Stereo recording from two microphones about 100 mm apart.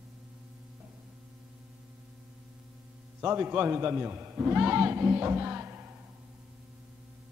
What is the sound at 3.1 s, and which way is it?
A man's voice, 20° right (ahead or behind).